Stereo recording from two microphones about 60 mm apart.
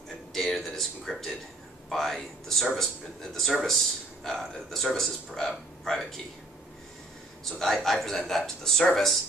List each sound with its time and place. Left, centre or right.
0.3 s a sound: centre
1.9 s speech: centre
7.5 s speech: centre